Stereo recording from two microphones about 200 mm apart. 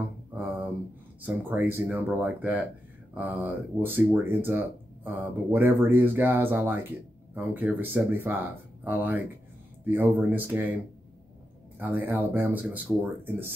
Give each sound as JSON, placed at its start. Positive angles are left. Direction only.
{"t": 0.3, "sound": "a sound", "side_deg": -10}
{"t": 1.2, "sound": "speech", "side_deg": -10}
{"t": 11.8, "sound": "speech", "side_deg": -10}